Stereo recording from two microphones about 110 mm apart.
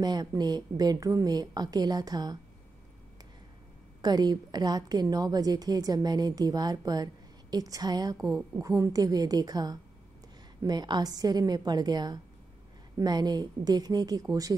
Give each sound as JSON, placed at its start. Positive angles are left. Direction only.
{"t": 0.0, "sound": "a woman's voice", "side_deg": -35}
{"t": 4.0, "sound": "a woman's voice", "side_deg": -40}